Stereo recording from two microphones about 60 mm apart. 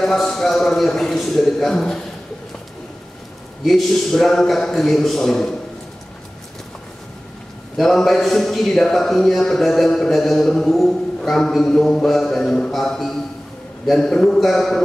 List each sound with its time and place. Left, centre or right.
0.0 s speech: centre
3.6 s a man's voice: centre
7.7 s speech: centre